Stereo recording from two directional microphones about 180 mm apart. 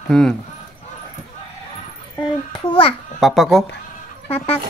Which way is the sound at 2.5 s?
30° left (ahead or behind).